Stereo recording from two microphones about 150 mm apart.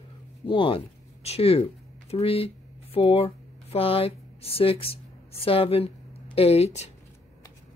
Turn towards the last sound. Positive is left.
turn(degrees=45)  # may be behind; listen again after turning